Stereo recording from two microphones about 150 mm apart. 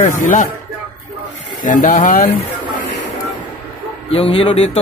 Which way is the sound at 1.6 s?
60° left (ahead or behind).